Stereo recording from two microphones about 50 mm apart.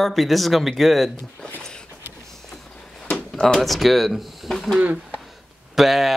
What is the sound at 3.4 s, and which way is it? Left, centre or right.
Speech, centre.